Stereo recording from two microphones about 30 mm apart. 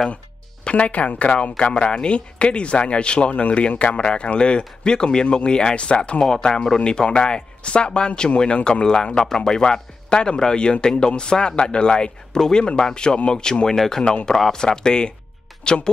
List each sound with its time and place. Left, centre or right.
0.7 s speech: left
1.6 s a man's voice: left
3.3 s a man's voice: left
5.8 s a man's voice: left
6.2 s speech: left